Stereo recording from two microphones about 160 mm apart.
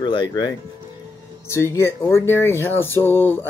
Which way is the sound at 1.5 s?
15° left (ahead or behind).